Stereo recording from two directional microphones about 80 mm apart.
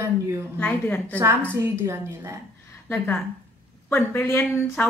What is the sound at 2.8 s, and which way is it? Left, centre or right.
A woman's voice, left.